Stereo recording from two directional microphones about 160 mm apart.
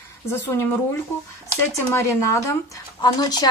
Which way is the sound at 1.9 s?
20° left (ahead or behind).